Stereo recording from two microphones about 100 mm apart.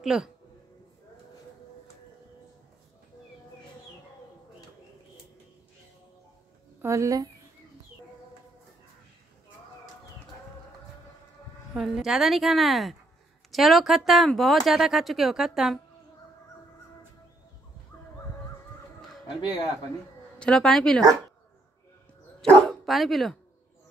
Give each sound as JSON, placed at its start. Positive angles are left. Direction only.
{"t": 0.0, "sound": "speech", "side_deg": -5}
{"t": 6.8, "sound": "speech", "side_deg": -30}
{"t": 11.7, "sound": "speech", "side_deg": -5}
{"t": 20.3, "sound": "a woman's voice", "side_deg": 10}
{"t": 22.4, "sound": "dog", "side_deg": 5}